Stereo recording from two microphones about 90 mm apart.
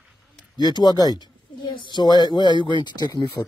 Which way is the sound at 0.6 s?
50° left (ahead or behind).